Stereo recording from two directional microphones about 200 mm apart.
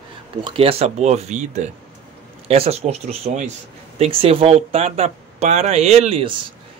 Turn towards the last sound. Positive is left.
turn(degrees=-30)  # may be behind; listen again after turning